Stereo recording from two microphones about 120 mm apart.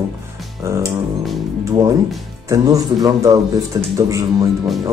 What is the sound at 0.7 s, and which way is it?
Speech, 20° right (ahead or behind).